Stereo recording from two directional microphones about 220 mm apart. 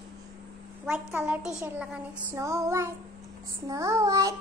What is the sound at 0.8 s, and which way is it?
A child's voice, 5° right (ahead or behind).